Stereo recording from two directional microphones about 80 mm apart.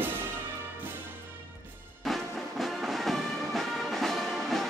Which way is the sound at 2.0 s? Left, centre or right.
Centre.